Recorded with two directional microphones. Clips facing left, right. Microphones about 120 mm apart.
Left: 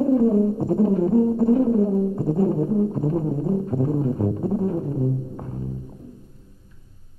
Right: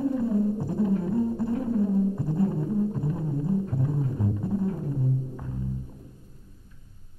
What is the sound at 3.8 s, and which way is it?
Music, 40° left (ahead or behind).